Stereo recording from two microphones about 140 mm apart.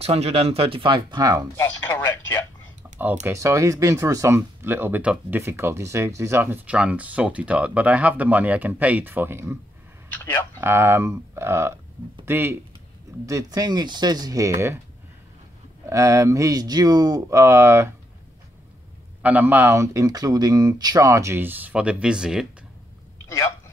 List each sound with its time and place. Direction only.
0.0 s speech: 45° right (ahead or behind); by 1.5 s 30° right (ahead or behind)
1.6 s speech: 15° left (ahead or behind)
3.3 s speech: 20° right (ahead or behind)
10.1 s speech: 15° left (ahead or behind)
10.6 s speech: 15° right (ahead or behind)
15.9 s speech: 20° right (ahead or behind)
19.2 s speech: 10° right (ahead or behind)
23.2 s a sound: 20° left (ahead or behind)